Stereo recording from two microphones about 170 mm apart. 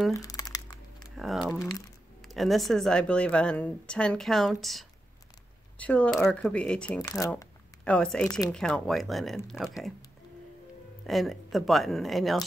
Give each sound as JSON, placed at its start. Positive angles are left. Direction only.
{"t": 0.1, "sound": "crumpling", "side_deg": 20}
{"t": 1.1, "sound": "a woman's voice", "side_deg": 0}
{"t": 7.8, "sound": "a woman's voice", "side_deg": 5}
{"t": 11.1, "sound": "a woman's voice", "side_deg": 0}